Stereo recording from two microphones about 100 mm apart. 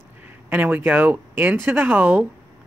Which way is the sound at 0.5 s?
20° right (ahead or behind).